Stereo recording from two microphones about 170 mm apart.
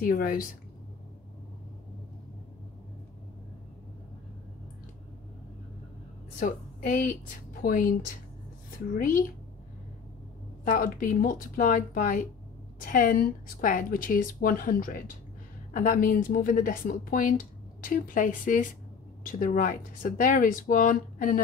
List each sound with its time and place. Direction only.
0.0 s speech: 55° left (ahead or behind)
6.4 s a woman's voice: 55° left (ahead or behind)
10.6 s speech: 55° left (ahead or behind)